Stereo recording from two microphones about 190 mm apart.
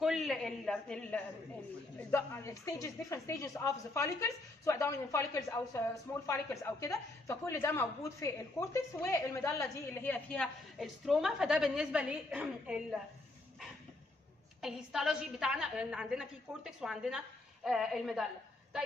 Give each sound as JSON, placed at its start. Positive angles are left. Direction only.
{"t": 0.0, "sound": "a woman's voice", "side_deg": 0}
{"t": 14.6, "sound": "a woman's voice", "side_deg": -5}